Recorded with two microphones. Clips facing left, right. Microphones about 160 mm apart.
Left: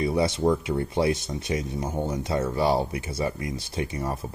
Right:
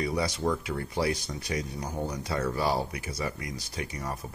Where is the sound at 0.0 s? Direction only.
25° left (ahead or behind).